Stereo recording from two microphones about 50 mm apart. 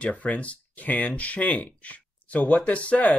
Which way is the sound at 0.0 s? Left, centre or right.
Left.